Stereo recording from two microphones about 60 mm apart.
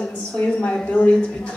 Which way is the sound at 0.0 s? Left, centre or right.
Centre.